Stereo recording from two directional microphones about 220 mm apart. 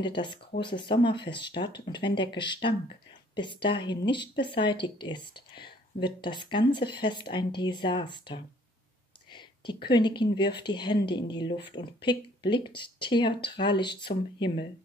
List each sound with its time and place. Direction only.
0.0 s speech: 20° left (ahead or behind)